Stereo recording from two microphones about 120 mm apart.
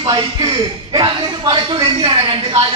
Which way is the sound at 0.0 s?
40° right (ahead or behind).